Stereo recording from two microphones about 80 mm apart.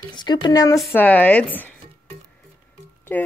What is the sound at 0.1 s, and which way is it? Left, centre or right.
Speech, left.